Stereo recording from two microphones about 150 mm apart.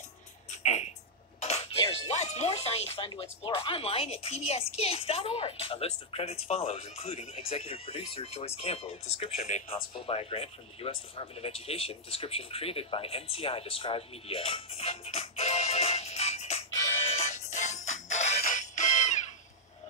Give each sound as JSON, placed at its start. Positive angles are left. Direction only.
{"t": 0.5, "sound": "music", "side_deg": 50}
{"t": 1.4, "sound": "speech", "side_deg": 45}
{"t": 17.1, "sound": "music", "side_deg": 50}